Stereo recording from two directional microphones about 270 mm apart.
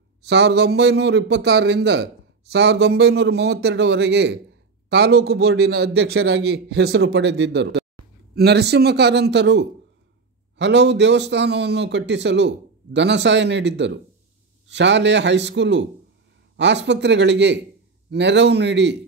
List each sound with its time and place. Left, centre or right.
0.2 s a man's voice: right